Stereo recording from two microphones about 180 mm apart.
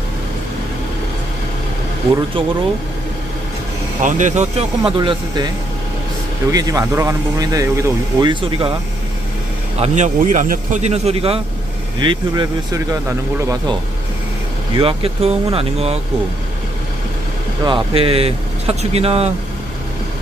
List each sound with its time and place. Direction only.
4.0 s speech: 40° right (ahead or behind); by 5.5 s 25° right (ahead or behind)
6.5 s speech: 20° right (ahead or behind)
9.8 s speech: 40° right (ahead or behind); by 13.0 s 20° right (ahead or behind)
14.8 s speech: 30° right (ahead or behind)
17.6 s speech: 30° right (ahead or behind)